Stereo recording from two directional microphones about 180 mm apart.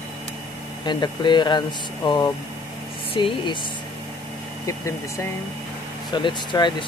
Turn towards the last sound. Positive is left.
turn(degrees=25)  # may be behind; listen again after turning